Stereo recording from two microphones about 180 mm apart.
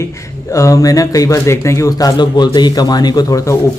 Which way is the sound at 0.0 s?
15° left (ahead or behind).